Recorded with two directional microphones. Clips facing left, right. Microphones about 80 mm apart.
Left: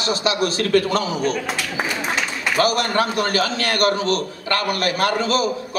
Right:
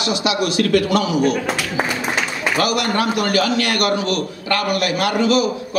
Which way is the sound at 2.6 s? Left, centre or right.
Left.